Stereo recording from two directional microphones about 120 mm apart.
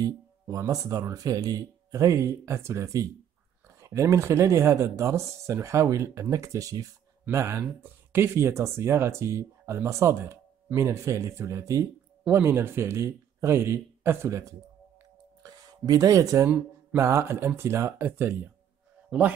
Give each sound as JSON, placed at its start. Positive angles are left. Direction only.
{"t": 0.0, "sound": "a man's voice", "side_deg": -25}